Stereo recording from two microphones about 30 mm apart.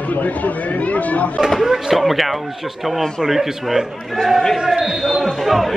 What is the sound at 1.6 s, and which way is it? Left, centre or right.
Speech, centre.